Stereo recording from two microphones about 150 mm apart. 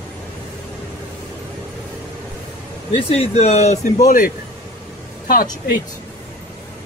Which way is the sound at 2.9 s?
40° left (ahead or behind).